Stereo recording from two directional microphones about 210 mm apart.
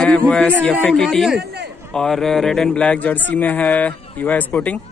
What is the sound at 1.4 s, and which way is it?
Speech, 50° right (ahead or behind).